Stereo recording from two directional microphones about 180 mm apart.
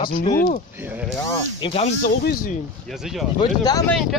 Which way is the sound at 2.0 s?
55° left (ahead or behind).